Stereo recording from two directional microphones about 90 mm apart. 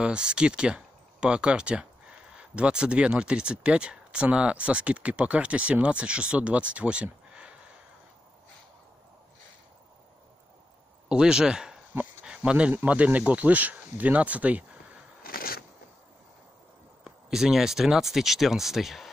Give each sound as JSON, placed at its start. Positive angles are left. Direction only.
{"t": 0.0, "sound": "speech", "side_deg": -10}
{"t": 11.1, "sound": "speech", "side_deg": -10}
{"t": 17.0, "sound": "speech", "side_deg": -5}